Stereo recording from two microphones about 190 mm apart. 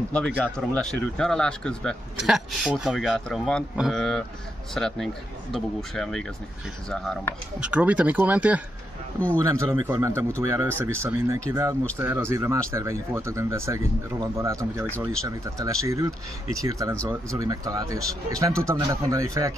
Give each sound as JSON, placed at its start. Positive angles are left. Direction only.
{"t": 0.6, "sound": "a man's voice", "side_deg": 5}
{"t": 7.7, "sound": "speech", "side_deg": -5}